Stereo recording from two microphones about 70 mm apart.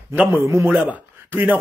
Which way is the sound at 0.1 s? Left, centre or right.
Right.